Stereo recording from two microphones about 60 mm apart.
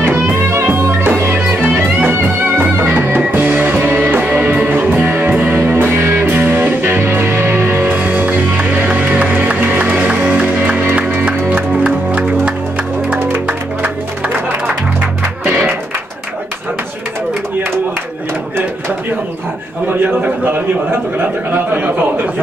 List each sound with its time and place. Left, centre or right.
0.0 s music: right
7.9 s music: right
20.2 s a sound: right